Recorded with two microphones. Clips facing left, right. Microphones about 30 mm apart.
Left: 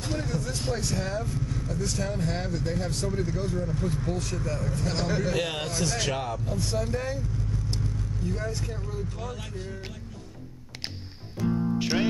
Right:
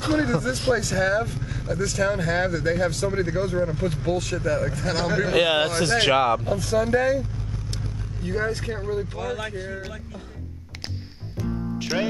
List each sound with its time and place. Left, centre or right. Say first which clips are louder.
0.0 s speech: right 9 dB; right
0.7 s speech: right 8 dB; right
1.8 s speech: right 7 dB; right
3.1 s speech: right 5 dB; right
3.5 s speech: right 5 dB; right
5.0 s speech: right 8 dB; right
6.6 s speech: right 8 dB; right
8.2 s speech: right 7 dB; right
9.2 s speech: right 8 dB; right
11.8 s music: right 3 dB; centre